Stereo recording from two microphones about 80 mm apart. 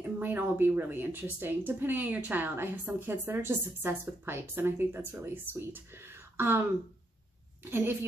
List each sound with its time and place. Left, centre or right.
0.0 s speech: right
7.6 s speech: right